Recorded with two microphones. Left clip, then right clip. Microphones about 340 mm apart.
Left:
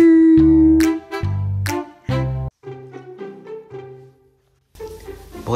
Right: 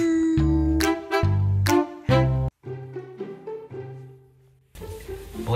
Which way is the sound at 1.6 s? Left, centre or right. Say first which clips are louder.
Right 3 dB; centre.